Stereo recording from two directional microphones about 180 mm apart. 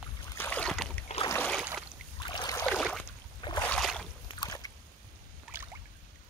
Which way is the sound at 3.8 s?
Centre (ahead or behind).